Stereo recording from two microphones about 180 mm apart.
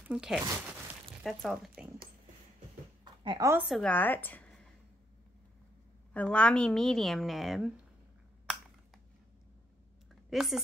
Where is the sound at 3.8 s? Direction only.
10° left (ahead or behind).